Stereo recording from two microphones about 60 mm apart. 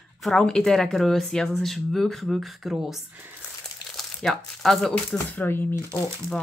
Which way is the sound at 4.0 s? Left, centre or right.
Centre.